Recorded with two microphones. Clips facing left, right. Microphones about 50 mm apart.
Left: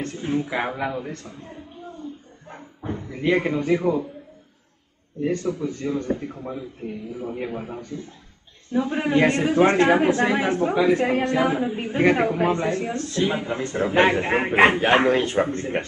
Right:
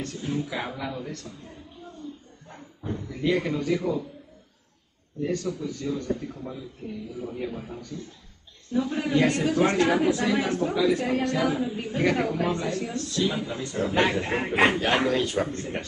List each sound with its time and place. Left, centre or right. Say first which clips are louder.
0.0 s speech: left 5 dB; left
5.2 s speech: left 4 dB; left